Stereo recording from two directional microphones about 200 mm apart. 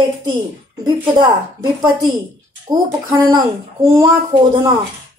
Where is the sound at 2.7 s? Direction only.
15° right (ahead or behind).